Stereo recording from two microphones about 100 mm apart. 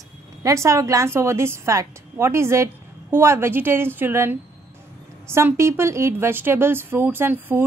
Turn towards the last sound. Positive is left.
turn(degrees=-20)  # may be behind; listen again after turning